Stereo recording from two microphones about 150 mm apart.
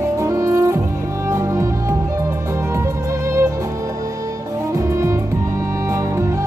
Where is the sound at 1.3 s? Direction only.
20° right (ahead or behind).